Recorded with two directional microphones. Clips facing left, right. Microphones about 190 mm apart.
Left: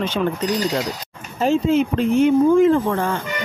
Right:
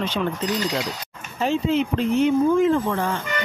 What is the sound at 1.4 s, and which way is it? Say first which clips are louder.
Speech: left 4 dB; 45° left (ahead or behind).